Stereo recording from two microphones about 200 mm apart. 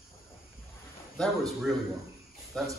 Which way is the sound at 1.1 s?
Centre (ahead or behind).